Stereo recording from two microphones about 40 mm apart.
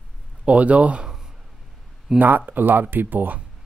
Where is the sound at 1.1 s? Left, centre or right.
Centre.